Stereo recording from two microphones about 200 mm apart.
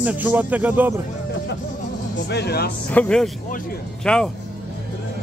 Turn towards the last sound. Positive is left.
turn(degrees=5)  # may be behind; listen again after turning